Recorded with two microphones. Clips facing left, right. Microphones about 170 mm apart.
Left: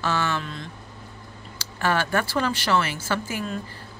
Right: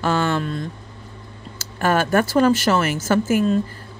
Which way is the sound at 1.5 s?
50° right (ahead or behind).